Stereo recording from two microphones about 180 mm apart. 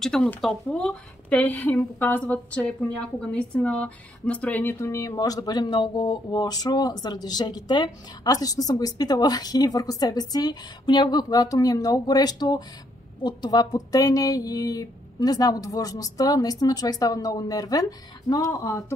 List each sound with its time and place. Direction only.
0.0 s speech: 5° left (ahead or behind)